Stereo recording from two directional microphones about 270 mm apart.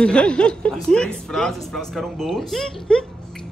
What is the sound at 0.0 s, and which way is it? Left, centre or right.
Speech, centre.